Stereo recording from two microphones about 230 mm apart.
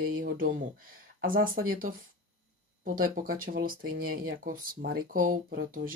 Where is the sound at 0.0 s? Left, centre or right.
Right.